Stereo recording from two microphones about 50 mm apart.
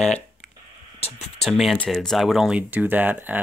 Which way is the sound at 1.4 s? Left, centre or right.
Centre.